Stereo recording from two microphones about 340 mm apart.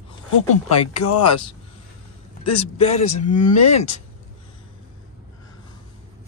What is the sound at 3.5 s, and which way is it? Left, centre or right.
Speech, left.